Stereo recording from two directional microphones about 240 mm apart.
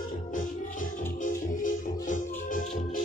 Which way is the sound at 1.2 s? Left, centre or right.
Left.